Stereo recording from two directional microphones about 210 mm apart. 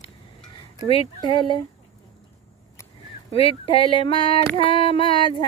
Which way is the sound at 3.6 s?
25° left (ahead or behind).